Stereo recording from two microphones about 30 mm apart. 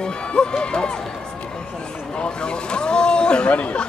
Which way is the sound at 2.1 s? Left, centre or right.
Left.